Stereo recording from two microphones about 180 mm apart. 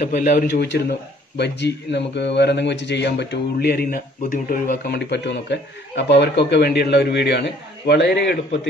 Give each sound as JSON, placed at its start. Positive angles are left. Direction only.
{"t": 0.0, "sound": "a man's voice", "side_deg": 50}